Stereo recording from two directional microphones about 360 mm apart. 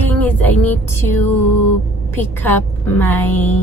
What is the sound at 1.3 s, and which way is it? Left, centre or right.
Mantra, left.